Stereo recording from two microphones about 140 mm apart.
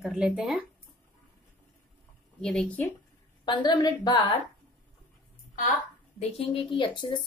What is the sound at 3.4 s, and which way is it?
Speech, 30° left (ahead or behind).